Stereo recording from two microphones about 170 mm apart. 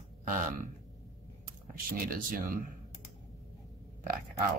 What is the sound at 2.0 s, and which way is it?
Speech, 60° right (ahead or behind).